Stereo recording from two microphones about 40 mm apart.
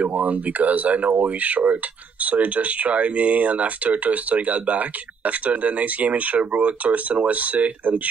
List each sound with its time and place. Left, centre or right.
0.0 s speech: right